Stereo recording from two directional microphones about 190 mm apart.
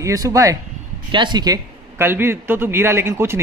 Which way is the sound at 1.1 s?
25° right (ahead or behind).